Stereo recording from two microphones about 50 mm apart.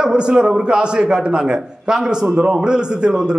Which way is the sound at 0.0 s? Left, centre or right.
Centre.